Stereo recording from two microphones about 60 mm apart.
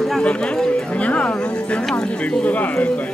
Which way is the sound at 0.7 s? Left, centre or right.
Left.